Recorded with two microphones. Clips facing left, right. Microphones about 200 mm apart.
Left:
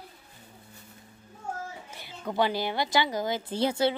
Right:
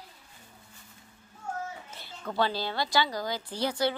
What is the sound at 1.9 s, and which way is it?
A woman's voice, 15° left (ahead or behind).